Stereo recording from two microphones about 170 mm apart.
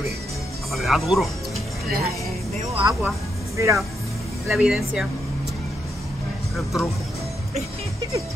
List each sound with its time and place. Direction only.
0.7 s speech: centre (ahead or behind)
2.5 s speech: 40° right (ahead or behind)
2.9 s speech: centre (ahead or behind)
3.5 s speech: 15° right (ahead or behind)
4.5 s speech: centre (ahead or behind)
6.5 s speech: centre (ahead or behind)